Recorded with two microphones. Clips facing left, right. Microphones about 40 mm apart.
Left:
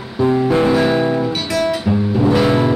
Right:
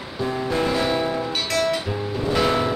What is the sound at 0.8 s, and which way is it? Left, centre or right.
Guitar, centre.